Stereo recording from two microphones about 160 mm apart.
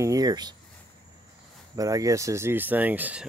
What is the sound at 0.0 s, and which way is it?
Speech, 20° right (ahead or behind).